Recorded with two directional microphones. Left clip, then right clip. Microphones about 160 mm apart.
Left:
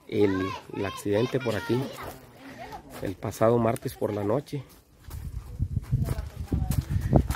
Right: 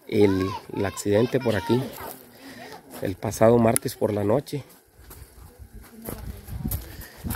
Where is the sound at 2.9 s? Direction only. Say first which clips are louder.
Right 6 dB; 25° right (ahead or behind).